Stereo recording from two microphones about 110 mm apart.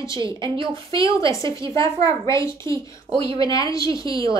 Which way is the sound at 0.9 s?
30° left (ahead or behind).